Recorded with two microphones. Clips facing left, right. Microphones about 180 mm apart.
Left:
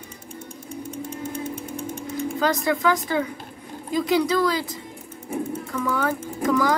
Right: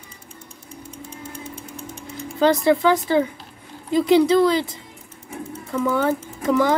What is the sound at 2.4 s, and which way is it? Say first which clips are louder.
A child's voice: right 7 dB; 30° right (ahead or behind).